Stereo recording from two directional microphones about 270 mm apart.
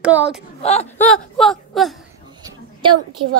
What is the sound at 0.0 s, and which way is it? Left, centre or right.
Speech, centre.